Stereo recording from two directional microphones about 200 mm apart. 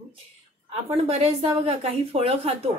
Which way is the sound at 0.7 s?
30° right (ahead or behind).